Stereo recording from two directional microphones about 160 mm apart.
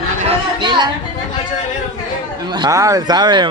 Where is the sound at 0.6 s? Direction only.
30° right (ahead or behind).